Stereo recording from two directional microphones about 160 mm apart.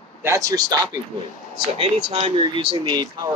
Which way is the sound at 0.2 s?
20° right (ahead or behind).